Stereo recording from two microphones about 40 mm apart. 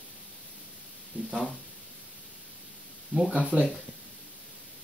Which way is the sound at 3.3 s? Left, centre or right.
Right.